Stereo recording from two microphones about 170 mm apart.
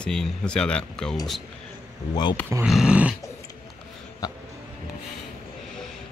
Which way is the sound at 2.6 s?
5° right (ahead or behind).